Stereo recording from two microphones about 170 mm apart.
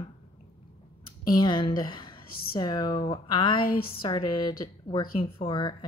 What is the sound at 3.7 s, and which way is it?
Speech, 60° left (ahead or behind).